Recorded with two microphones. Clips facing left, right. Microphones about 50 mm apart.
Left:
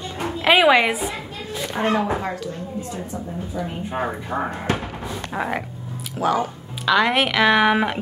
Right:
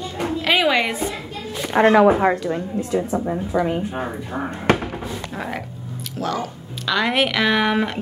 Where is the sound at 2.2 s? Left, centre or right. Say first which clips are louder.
Right 9 dB; right.